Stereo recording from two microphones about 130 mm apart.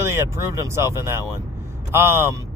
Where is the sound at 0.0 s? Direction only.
20° right (ahead or behind).